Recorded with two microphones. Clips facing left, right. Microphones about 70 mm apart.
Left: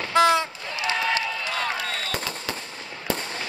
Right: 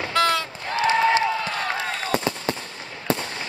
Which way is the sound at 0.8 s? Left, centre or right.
Right.